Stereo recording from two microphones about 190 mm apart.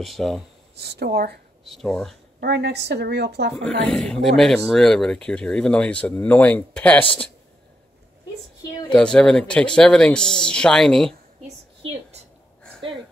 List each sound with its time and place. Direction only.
0.0 s speech: centre (ahead or behind)
0.7 s a woman's voice: 60° right (ahead or behind)
1.7 s speech: centre (ahead or behind)
2.4 s a woman's voice: 60° right (ahead or behind)
3.6 s speech: 5° left (ahead or behind)
8.9 s speech: 5° left (ahead or behind)
11.8 s a sound: 30° right (ahead or behind)